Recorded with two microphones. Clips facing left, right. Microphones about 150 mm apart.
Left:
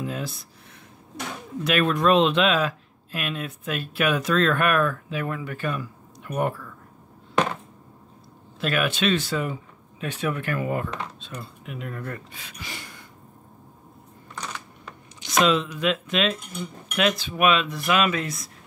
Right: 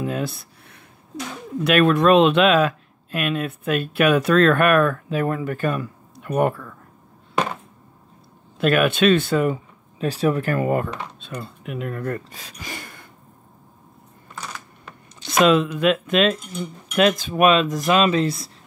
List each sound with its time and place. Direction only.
0.0 s a sound: 60° right (ahead or behind)
1.6 s speech: 60° right (ahead or behind)
8.5 s speech: 55° right (ahead or behind)
9.9 s speech: 35° right (ahead or behind); by 13.0 s 50° right (ahead or behind)
14.3 s camera: 5° right (ahead or behind)
15.2 s speech: 55° right (ahead or behind); by 18.5 s 30° right (ahead or behind)